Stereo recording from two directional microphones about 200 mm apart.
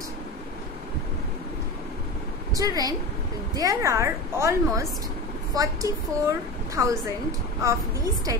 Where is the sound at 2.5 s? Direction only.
20° right (ahead or behind).